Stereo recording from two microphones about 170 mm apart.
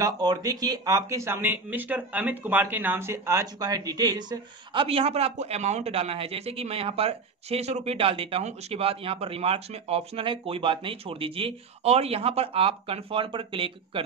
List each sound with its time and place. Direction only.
0.0 s speech: 20° right (ahead or behind)